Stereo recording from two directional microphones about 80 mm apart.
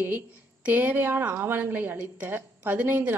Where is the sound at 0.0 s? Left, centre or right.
Centre.